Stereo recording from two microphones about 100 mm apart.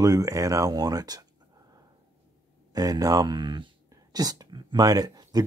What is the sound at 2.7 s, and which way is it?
Speech, 35° right (ahead or behind).